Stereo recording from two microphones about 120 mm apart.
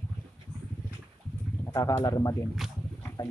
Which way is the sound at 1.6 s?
25° left (ahead or behind).